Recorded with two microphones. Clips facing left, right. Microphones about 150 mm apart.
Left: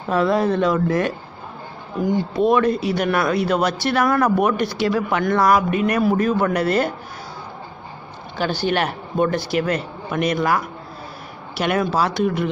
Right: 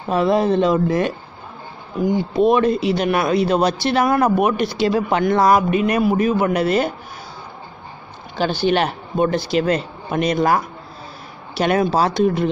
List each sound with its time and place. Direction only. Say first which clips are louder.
0.1 s speech: right 2 dB; 20° right (ahead or behind)
2.4 s speech: right 2 dB; 25° right (ahead or behind)
8.4 s speech: right 3 dB; 20° right (ahead or behind)
11.6 s speech: right 3 dB; 30° right (ahead or behind)